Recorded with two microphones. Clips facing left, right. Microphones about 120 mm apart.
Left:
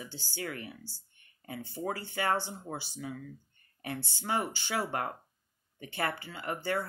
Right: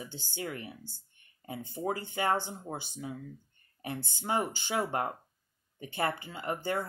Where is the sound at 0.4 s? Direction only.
30° right (ahead or behind).